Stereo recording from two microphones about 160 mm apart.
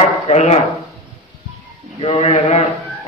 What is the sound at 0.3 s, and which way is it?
Speech, 45° left (ahead or behind).